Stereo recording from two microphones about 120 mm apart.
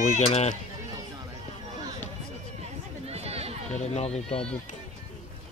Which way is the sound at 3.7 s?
65° left (ahead or behind).